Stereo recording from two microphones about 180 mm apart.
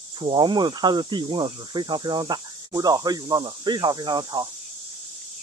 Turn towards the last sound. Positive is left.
turn(degrees=-20)  # may be behind; listen again after turning